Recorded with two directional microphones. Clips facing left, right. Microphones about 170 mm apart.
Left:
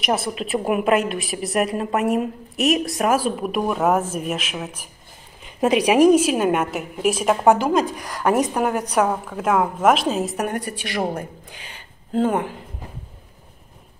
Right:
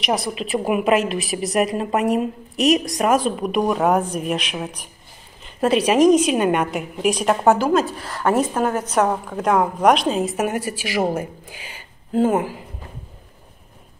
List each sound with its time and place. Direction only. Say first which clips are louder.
0.1 s a woman's voice: even; 15° right (ahead or behind)
0.5 s a woman's voice: right 1 dB; 5° right (ahead or behind)
5.4 s a woman's voice: even; 15° left (ahead or behind); by 12.6 s 5° right (ahead or behind)